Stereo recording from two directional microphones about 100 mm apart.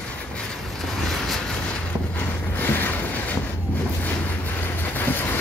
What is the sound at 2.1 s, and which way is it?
Vehicle, 20° left (ahead or behind).